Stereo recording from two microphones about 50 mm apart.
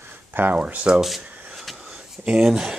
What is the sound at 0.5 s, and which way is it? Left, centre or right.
Speech, right.